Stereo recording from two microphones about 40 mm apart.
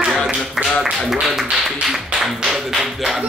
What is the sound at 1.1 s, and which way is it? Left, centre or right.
Speech, centre.